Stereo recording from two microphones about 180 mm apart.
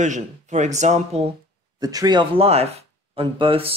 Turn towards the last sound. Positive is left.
turn(degrees=-30)  # may be behind; listen again after turning